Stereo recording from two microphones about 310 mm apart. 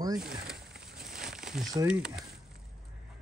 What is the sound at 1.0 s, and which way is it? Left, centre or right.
Crumpling, centre.